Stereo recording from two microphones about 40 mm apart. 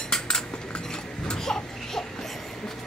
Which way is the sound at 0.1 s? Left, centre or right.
Centre.